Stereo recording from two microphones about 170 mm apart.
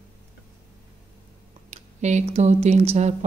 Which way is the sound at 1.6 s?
40° right (ahead or behind).